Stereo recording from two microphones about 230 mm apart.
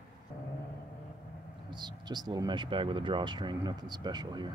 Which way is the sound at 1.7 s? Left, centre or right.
Centre.